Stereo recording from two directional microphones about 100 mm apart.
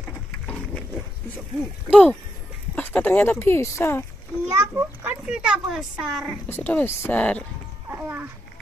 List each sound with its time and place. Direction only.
1.9 s speech: 10° left (ahead or behind); by 4.0 s 30° left (ahead or behind)
4.5 s a child's voice: 25° right (ahead or behind)
5.2 s a woman's voice: 10° right (ahead or behind)
6.4 s speech: 15° left (ahead or behind)
7.9 s a woman's voice: 20° right (ahead or behind)